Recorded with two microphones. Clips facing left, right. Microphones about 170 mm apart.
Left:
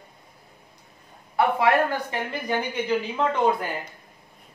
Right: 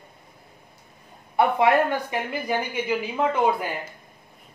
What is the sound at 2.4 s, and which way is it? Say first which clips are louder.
Speech: even; 10° right (ahead or behind).